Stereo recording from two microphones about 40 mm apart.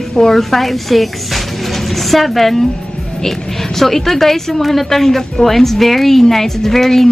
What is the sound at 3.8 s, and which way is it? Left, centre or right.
A woman's voice, centre.